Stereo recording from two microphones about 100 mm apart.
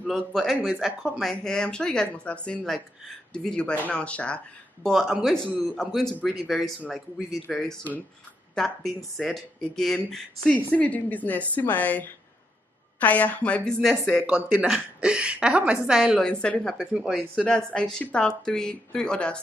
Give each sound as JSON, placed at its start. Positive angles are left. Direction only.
{"t": 0.0, "sound": "speech", "side_deg": 0}
{"t": 1.2, "sound": "a woman's voice", "side_deg": 5}
{"t": 4.8, "sound": "speech", "side_deg": 0}
{"t": 10.5, "sound": "a woman's voice", "side_deg": 15}
{"t": 14.2, "sound": "a woman's voice", "side_deg": -10}
{"t": 16.2, "sound": "a woman's voice", "side_deg": 10}
{"t": 16.7, "sound": "speech", "side_deg": -5}
{"t": 17.4, "sound": "a woman's voice", "side_deg": 10}